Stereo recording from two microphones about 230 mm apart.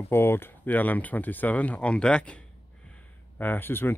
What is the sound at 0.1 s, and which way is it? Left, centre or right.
Speech, centre.